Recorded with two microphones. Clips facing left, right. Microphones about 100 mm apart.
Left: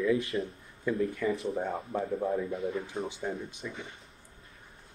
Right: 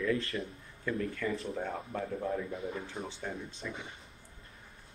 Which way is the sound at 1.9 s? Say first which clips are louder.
Left 5 dB; 20° left (ahead or behind).